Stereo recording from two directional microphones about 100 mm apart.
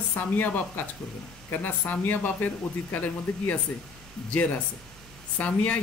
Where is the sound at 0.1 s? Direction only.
15° left (ahead or behind).